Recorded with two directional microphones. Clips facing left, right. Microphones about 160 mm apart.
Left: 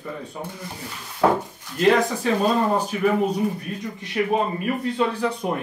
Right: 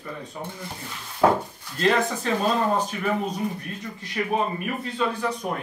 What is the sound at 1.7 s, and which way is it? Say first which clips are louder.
Speech: left 4 dB; 10° left (ahead or behind).